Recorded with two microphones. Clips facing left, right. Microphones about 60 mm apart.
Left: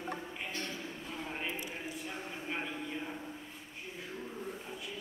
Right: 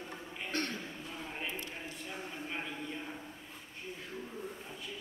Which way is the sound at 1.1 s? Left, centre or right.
Centre.